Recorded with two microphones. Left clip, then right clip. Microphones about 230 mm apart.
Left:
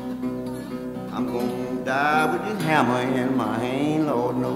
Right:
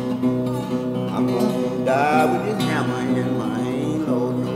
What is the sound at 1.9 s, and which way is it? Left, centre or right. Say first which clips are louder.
Music: right 3 dB; centre.